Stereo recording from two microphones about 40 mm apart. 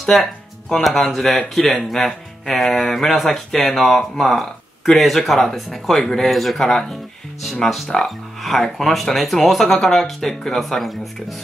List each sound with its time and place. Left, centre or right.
0.0 s speech: centre